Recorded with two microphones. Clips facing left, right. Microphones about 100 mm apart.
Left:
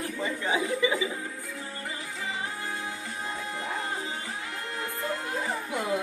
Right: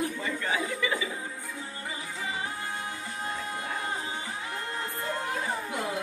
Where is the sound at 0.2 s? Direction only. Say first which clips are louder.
Left 2 dB; 20° left (ahead or behind).